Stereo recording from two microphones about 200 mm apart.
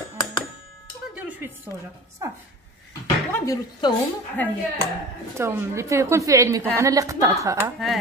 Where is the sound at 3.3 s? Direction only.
15° left (ahead or behind).